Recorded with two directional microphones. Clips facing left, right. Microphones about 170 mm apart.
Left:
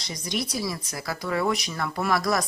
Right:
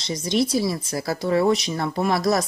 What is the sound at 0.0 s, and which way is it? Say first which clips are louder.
Speech: right 8 dB; 25° right (ahead or behind).